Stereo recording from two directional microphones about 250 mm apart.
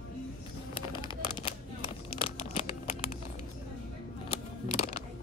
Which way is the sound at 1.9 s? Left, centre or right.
Left.